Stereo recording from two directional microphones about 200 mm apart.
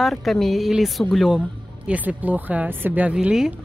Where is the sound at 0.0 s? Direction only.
Centre (ahead or behind).